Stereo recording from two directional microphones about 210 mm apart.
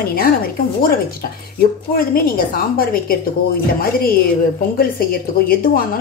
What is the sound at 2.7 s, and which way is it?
Speech, 45° left (ahead or behind).